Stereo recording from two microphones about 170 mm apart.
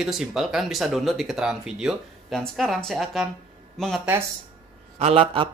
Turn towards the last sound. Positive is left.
turn(degrees=-35)  # may be behind; listen again after turning